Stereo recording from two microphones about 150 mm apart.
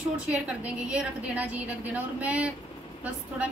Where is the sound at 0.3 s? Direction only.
5° right (ahead or behind).